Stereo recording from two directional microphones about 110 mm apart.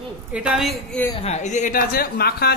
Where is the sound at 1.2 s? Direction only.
90° left.